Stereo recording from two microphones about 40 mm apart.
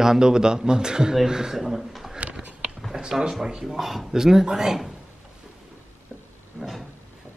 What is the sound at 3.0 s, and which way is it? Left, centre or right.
Speech, centre.